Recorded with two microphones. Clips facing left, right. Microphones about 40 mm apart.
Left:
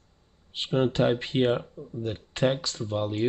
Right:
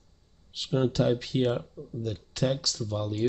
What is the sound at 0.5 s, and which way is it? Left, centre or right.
Speech, left.